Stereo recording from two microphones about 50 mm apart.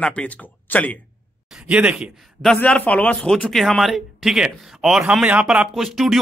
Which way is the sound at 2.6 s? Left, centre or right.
Left.